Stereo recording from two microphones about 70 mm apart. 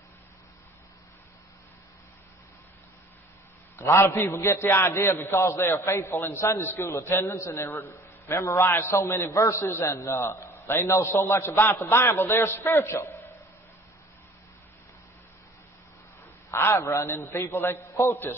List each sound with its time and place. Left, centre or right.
3.7 s a man's voice: left
16.4 s a man's voice: left
16.8 s a man's voice: left